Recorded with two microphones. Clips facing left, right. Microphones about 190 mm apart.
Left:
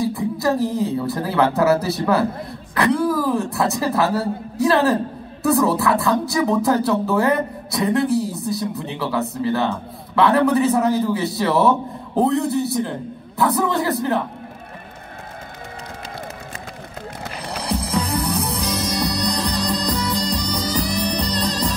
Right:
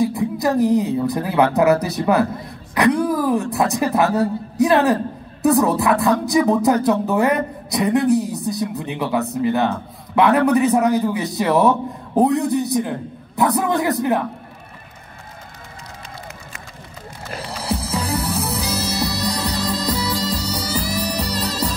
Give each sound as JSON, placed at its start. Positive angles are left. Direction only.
{"t": 0.0, "sound": "a sound", "side_deg": -15}
{"t": 0.6, "sound": "speech", "side_deg": -15}
{"t": 17.6, "sound": "music", "side_deg": -5}